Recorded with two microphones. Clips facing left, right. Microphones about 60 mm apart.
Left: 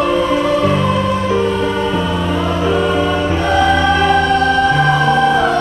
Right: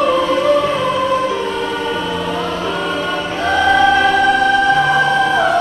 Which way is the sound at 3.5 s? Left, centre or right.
Centre.